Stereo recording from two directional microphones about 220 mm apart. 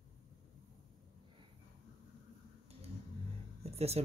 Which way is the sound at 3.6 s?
30° right (ahead or behind).